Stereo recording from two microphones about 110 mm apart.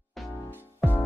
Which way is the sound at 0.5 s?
20° left (ahead or behind).